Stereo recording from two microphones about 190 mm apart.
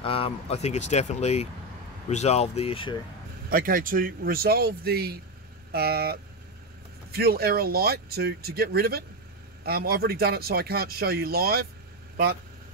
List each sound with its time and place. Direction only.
0.0 s speech: 30° left (ahead or behind)
3.4 s speech: 50° right (ahead or behind)